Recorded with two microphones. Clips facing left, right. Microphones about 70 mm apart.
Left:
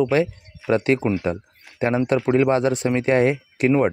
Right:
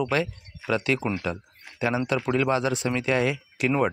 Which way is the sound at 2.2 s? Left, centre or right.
Left.